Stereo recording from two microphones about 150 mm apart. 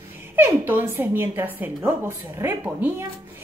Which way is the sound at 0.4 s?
15° right (ahead or behind).